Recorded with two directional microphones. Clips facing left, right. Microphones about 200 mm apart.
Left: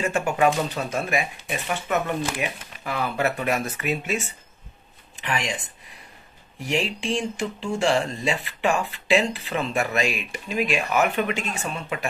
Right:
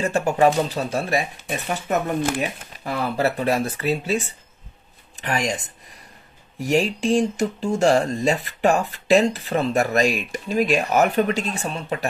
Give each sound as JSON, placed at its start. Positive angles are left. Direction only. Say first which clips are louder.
{"t": 0.0, "sound": "speech", "louder": "right 3 dB", "side_deg": -35}
{"t": 6.6, "sound": "speech", "louder": "right 6 dB", "side_deg": -45}